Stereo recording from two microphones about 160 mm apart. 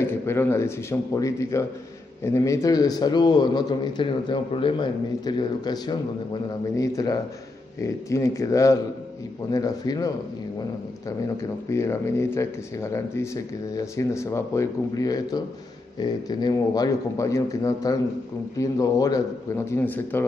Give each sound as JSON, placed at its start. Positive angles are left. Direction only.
{"t": 0.0, "sound": "a man's voice", "side_deg": 15}
{"t": 11.7, "sound": "a man's voice", "side_deg": 15}